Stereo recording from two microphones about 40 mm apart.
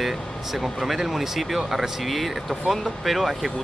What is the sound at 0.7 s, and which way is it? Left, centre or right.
Speech, centre.